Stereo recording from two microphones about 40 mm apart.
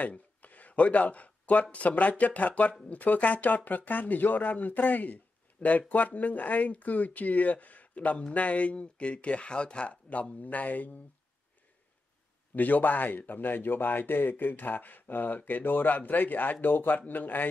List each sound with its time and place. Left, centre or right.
0.4 s speech: left
10.4 s speech: left
12.5 s speech: left